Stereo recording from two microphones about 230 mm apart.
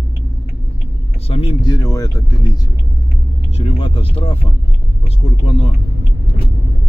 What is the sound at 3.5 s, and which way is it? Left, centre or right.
Speech, left.